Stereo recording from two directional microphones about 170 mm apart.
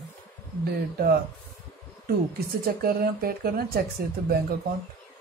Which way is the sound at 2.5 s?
60° right (ahead or behind).